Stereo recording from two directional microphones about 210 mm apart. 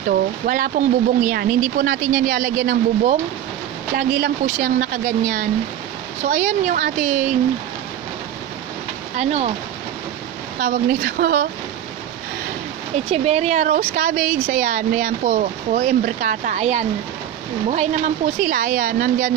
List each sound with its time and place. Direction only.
0.5 s speech: 40° right (ahead or behind)
9.1 s speech: 30° right (ahead or behind)
10.6 s speech: 40° right (ahead or behind)
13.1 s speech: 30° right (ahead or behind)